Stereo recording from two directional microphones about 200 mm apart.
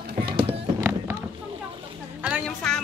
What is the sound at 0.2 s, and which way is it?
Music, 25° right (ahead or behind).